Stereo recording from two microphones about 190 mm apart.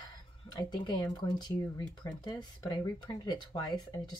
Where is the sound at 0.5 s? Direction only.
20° left (ahead or behind).